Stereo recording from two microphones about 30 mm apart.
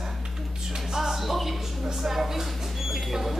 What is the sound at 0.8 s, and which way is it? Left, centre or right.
Speech, centre.